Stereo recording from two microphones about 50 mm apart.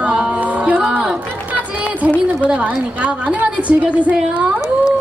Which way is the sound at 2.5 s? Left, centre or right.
Right.